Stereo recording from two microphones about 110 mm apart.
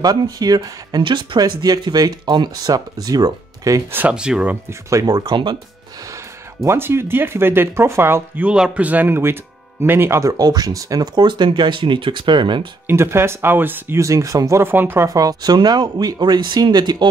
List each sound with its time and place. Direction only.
0.0 s speech: 35° right (ahead or behind)
3.9 s speech: 10° right (ahead or behind)
4.6 s speech: 30° right (ahead or behind); by 5.6 s 45° right (ahead or behind)
6.1 s speech: 25° right (ahead or behind)
8.5 s speech: 10° right (ahead or behind); by 12.6 s 45° right (ahead or behind)
12.8 s speech: 20° right (ahead or behind)
15.0 s speech: 35° right (ahead or behind)